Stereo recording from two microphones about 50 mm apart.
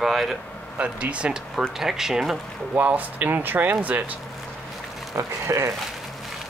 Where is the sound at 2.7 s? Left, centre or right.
Right.